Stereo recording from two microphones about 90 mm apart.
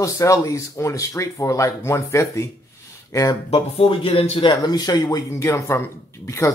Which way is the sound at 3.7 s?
90° left.